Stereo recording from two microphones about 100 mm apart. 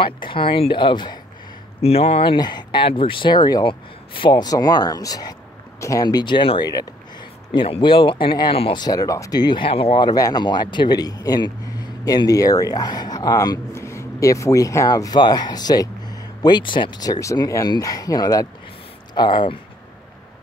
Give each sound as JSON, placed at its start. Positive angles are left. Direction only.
{"t": 0.0, "sound": "speech", "side_deg": 60}
{"t": 1.8, "sound": "speech", "side_deg": 85}
{"t": 2.3, "sound": "speech", "side_deg": 45}
{"t": 2.9, "sound": "speech", "side_deg": 60}
{"t": 6.0, "sound": "speech", "side_deg": 50}
{"t": 6.6, "sound": "speech", "side_deg": 40}
{"t": 7.5, "sound": "speech", "side_deg": 60}
{"t": 8.7, "sound": "speech", "side_deg": 40}
{"t": 9.7, "sound": "speech", "side_deg": 70}
{"t": 9.9, "sound": "speech", "side_deg": 40}
{"t": 13.7, "sound": "speech", "side_deg": 30}
{"t": 19.1, "sound": "speech", "side_deg": 50}